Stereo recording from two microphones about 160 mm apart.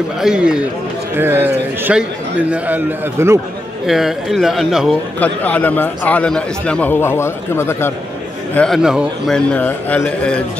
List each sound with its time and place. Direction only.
0.2 s a man's voice: 5° right (ahead or behind)
3.8 s a man's voice: centre (ahead or behind)
5.2 s a man's voice: 10° left (ahead or behind)
8.5 s a man's voice: centre (ahead or behind)
9.5 s a man's voice: 10° left (ahead or behind)